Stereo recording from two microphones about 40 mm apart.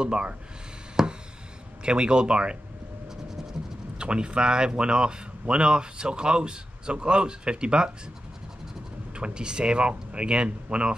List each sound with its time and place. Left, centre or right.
0.0 s speech: right
1.0 s a sound: centre
1.8 s speech: right
4.0 s speech: right
9.1 s speech: right